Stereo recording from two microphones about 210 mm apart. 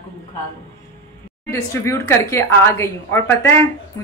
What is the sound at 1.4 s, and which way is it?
A woman's voice, 15° left (ahead or behind).